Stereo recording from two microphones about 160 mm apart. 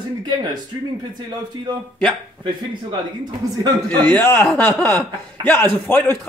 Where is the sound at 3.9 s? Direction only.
10° left (ahead or behind).